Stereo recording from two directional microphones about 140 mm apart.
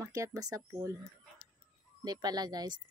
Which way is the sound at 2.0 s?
30° right (ahead or behind).